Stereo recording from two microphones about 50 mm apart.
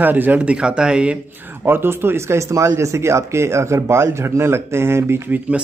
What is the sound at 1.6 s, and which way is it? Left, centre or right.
Speech, right.